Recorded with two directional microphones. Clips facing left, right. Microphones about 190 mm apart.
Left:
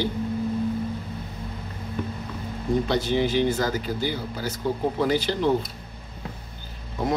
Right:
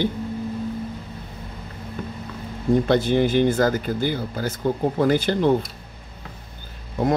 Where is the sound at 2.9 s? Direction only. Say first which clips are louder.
Right 4 dB; 50° right (ahead or behind).